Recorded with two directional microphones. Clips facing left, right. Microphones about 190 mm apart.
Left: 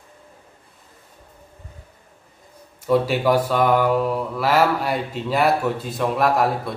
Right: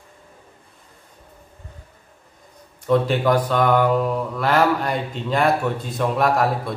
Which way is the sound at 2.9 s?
5° left (ahead or behind).